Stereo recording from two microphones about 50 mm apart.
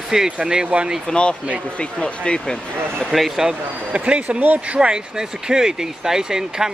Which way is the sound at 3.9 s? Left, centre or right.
Right.